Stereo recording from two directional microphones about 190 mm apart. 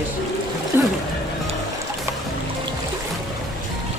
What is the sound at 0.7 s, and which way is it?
Speech, 10° right (ahead or behind).